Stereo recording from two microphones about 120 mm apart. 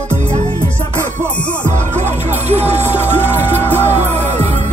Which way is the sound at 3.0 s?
20° left (ahead or behind).